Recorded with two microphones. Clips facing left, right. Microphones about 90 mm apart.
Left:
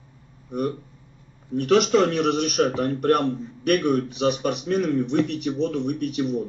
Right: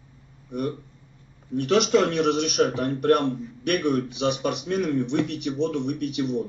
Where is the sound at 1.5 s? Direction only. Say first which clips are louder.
Left 2 dB; 45° left (ahead or behind).